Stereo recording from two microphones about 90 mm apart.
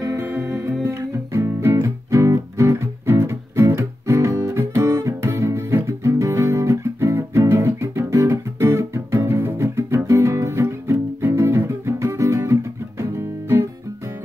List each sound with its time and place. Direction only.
0.0 s music: 35° right (ahead or behind)
13.0 s guitar: 30° right (ahead or behind)